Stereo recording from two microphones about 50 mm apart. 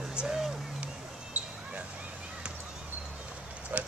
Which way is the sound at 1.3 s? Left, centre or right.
Right.